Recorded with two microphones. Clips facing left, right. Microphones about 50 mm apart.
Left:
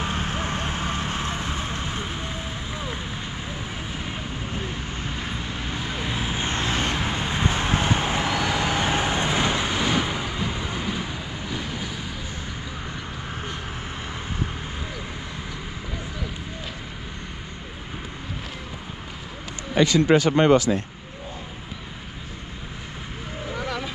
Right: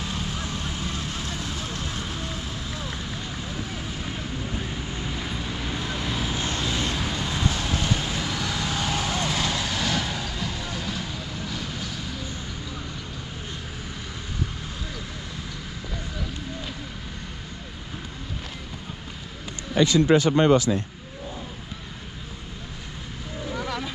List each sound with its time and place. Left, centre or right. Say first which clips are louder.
0.0 s vehicle: left 4 dB; left; by 12.1 s centre
20.2 s speech: left 1 dB; left
23.5 s a sound: left 1 dB; centre